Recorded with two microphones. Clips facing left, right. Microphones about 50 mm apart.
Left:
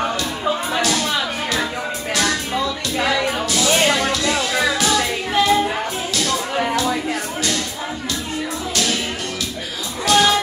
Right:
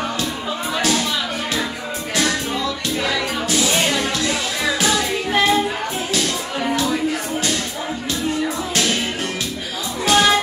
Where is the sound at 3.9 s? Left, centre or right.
Left.